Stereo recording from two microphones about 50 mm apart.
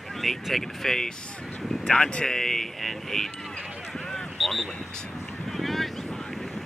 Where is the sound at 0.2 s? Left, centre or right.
Centre.